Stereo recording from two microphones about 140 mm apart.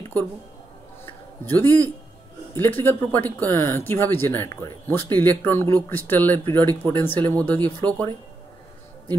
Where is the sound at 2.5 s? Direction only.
15° left (ahead or behind).